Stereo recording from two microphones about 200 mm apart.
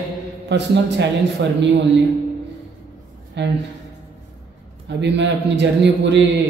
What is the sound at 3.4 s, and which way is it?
Speech, 60° right (ahead or behind).